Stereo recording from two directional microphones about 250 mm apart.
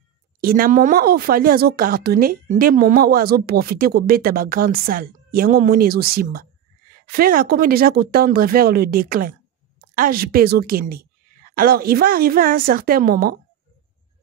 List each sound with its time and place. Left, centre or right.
0.4 s speech: right